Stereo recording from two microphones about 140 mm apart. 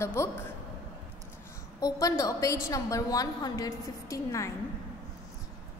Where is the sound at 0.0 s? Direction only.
20° left (ahead or behind).